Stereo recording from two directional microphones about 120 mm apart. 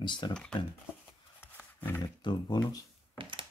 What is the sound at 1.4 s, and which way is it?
Roaring cats, 15° left (ahead or behind).